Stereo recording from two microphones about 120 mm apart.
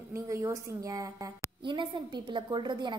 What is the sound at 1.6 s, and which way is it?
A woman's voice, 40° right (ahead or behind).